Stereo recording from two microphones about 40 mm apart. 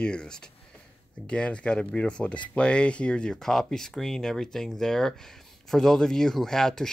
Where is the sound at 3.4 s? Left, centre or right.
Centre.